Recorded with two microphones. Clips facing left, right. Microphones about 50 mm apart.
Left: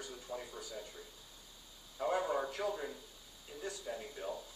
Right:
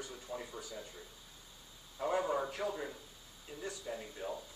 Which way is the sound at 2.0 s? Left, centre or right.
Centre.